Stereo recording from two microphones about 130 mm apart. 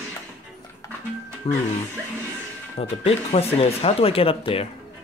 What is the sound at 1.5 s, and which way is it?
Speech, 50° left (ahead or behind).